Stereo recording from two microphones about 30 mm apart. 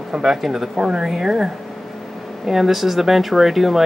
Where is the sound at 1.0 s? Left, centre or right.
Centre.